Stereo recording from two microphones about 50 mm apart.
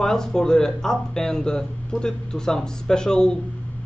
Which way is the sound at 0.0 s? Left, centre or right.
Centre.